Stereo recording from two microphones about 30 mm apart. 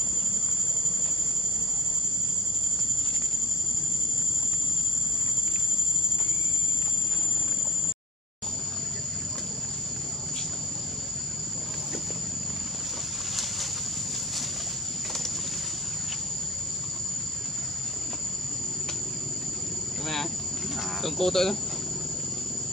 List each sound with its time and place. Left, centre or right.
21.0 s speech: centre